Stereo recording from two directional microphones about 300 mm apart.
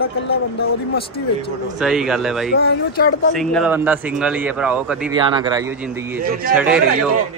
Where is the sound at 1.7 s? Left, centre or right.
Centre.